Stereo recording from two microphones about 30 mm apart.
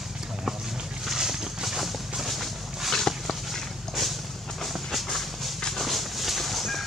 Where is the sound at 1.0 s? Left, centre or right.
Centre.